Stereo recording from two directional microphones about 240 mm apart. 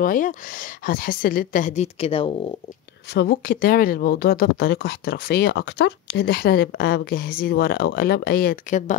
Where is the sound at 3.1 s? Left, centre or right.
Left.